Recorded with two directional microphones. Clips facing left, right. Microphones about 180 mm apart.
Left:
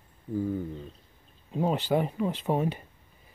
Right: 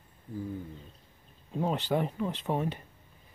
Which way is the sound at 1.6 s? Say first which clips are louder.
Left 3 dB; 5° left (ahead or behind).